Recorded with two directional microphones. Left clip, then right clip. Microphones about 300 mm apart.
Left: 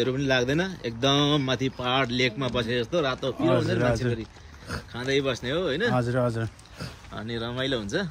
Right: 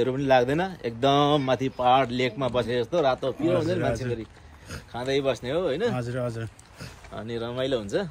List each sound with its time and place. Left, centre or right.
0.0 s speech: right
4.9 s speech: centre
5.9 s speech: centre
7.2 s speech: centre